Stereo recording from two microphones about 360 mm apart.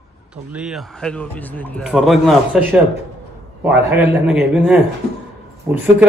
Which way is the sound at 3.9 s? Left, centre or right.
Centre.